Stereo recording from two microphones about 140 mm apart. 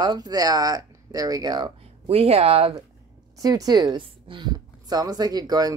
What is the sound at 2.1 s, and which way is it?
Speech, 45° right (ahead or behind).